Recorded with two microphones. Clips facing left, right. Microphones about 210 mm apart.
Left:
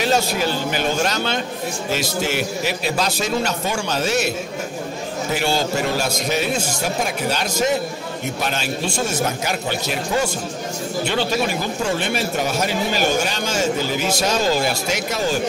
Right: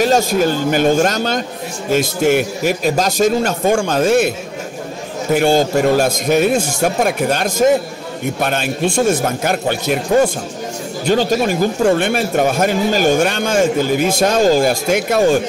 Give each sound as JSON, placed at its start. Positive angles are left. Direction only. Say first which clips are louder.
{"t": 0.0, "sound": "a man's voice", "louder": "right 6 dB", "side_deg": -45}
{"t": 5.3, "sound": "a man's voice", "louder": "right 9 dB", "side_deg": -50}